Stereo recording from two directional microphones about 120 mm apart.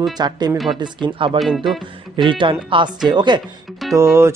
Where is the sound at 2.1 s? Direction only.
45° right (ahead or behind).